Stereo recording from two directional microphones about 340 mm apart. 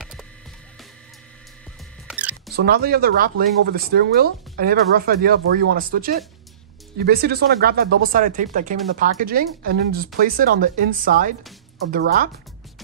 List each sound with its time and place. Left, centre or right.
2.0 s music: centre
2.5 s speech: right